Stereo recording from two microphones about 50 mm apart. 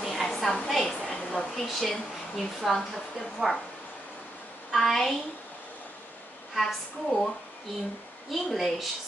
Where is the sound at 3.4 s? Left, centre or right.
Centre.